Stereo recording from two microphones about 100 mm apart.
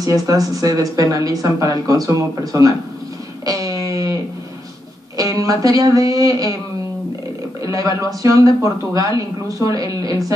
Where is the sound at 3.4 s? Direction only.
35° right (ahead or behind).